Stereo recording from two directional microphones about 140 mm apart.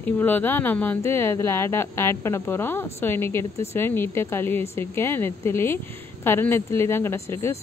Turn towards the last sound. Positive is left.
turn(degrees=20)  # may be behind; listen again after turning